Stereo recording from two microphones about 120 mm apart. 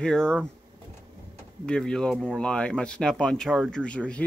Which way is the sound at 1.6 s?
5° left (ahead or behind).